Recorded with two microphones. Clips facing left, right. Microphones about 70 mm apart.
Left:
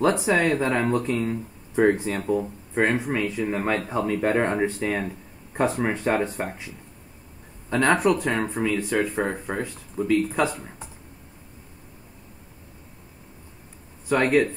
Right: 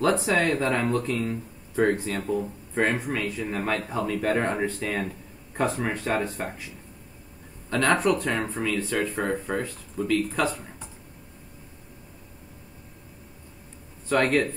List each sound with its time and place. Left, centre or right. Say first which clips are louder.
0.0 s speech: left 2 dB; centre
5.9 s speech: left 3 dB; left
7.7 s speech: left 2 dB; centre
14.0 s speech: left 2 dB; centre